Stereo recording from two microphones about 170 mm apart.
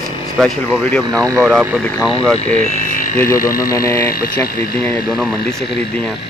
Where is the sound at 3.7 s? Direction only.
20° left (ahead or behind).